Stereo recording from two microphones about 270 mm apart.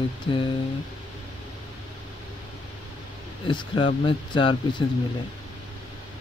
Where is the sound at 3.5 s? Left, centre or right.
Centre.